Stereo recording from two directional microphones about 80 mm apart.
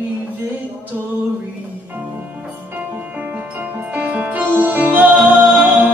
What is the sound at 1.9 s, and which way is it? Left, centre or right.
Music, right.